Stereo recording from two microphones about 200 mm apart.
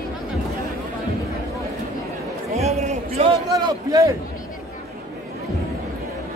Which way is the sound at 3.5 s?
15° right (ahead or behind).